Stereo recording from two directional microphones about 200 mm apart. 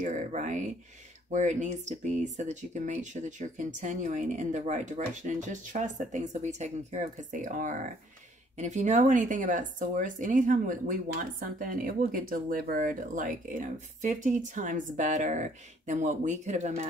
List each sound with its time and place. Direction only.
0.0 s speech: 35° right (ahead or behind)